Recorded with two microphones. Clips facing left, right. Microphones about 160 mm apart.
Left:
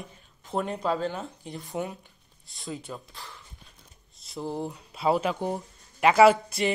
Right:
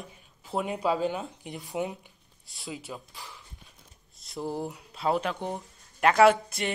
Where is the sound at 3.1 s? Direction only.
15° right (ahead or behind).